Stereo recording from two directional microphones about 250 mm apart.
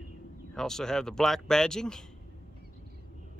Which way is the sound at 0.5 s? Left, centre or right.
Centre.